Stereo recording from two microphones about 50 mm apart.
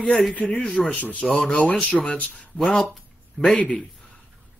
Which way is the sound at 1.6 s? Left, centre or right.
Left.